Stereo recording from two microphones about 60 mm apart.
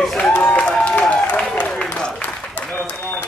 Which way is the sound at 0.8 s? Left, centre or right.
Left.